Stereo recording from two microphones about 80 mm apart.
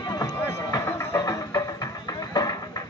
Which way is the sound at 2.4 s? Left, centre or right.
Left.